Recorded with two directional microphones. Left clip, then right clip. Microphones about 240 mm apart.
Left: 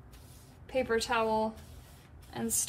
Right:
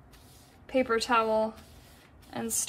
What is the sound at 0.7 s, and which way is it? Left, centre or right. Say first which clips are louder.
Speech: right 4 dB; right.